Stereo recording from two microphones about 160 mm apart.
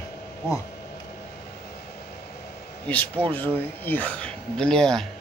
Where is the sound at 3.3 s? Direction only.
10° left (ahead or behind).